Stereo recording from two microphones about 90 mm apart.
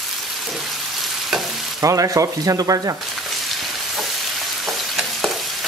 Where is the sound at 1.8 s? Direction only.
40° right (ahead or behind).